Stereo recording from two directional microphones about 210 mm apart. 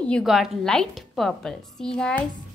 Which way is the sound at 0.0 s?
Centre (ahead or behind).